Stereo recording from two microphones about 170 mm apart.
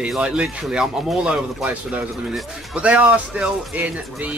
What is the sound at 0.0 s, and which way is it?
A man's voice, 5° right (ahead or behind).